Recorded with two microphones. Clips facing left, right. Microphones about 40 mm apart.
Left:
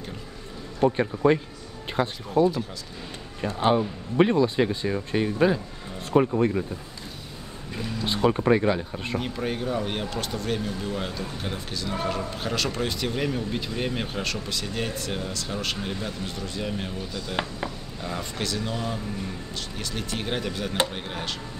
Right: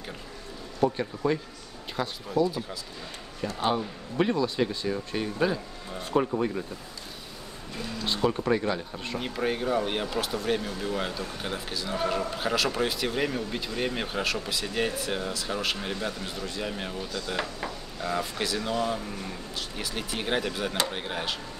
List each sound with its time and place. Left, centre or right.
0.7 s speech: left
8.0 s speech: left
9.2 s speech: centre
18.0 s speech: centre